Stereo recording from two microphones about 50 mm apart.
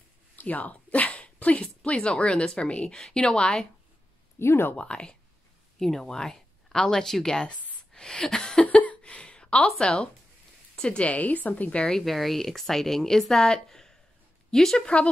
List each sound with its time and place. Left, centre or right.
0.4 s a sound: left
2.0 s a woman's voice: centre
4.4 s speech: left
4.7 s a woman's voice: centre
5.8 s speech: centre
7.9 s a sound: centre
8.6 s a sound: left
9.8 s a woman's voice: centre
12.0 s a woman's voice: centre